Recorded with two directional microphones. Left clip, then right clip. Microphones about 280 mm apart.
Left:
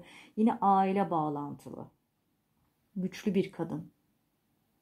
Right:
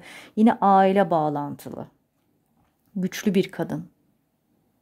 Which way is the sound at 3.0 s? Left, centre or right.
Right.